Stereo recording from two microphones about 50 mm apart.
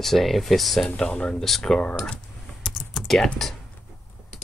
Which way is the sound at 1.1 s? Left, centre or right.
Left.